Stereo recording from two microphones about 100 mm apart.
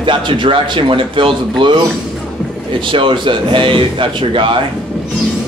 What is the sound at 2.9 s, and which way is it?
A man's voice, 55° right (ahead or behind).